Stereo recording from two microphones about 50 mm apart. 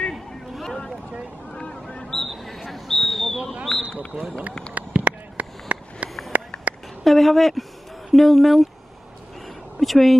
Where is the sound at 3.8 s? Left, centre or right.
Right.